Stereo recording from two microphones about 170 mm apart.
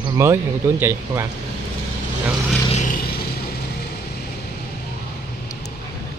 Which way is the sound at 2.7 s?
50° left (ahead or behind).